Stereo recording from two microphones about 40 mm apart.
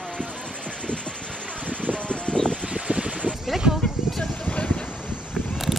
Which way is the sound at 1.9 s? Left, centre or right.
Left.